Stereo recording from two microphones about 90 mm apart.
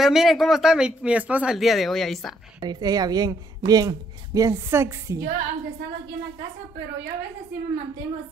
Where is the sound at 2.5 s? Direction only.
45° right (ahead or behind); by 5.2 s 30° right (ahead or behind).